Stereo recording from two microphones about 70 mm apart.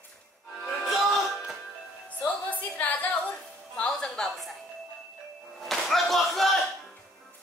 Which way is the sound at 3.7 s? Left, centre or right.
Centre.